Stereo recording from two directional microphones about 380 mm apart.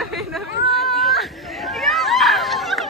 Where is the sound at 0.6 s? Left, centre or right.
Centre.